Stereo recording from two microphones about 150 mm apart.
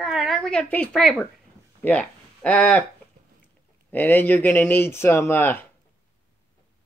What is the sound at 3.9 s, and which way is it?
Speech, 10° left (ahead or behind).